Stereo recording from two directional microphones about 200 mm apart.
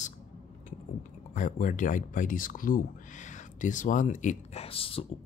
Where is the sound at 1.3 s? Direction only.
40° left (ahead or behind).